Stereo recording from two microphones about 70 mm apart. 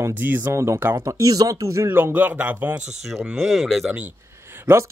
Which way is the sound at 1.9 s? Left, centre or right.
Right.